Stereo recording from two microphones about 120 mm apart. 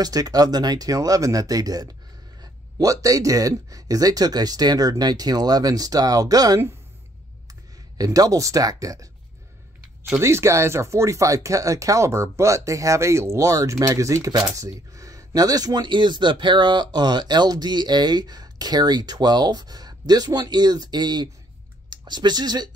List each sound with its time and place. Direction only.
0.0 s speech: 30° right (ahead or behind)
8.0 s speech: 30° right (ahead or behind)
10.1 s speech: 20° right (ahead or behind)